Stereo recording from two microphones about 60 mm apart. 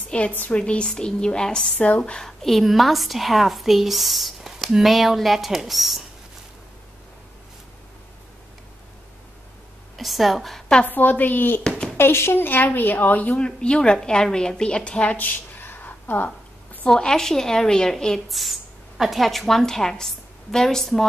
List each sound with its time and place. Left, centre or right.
0.1 s a woman's voice: left
2.2 s a woman's voice: centre
9.9 s a woman's voice: centre
10.9 s a woman's voice: left
13.4 s speech: centre
15.1 s a sound: left
16.8 s a woman's voice: centre